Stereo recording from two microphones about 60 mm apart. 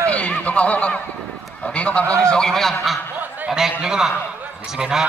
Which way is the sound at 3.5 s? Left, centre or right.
Centre.